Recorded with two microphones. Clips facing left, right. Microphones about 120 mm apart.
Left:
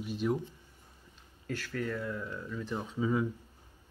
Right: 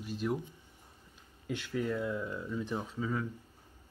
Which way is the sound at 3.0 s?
10° left (ahead or behind).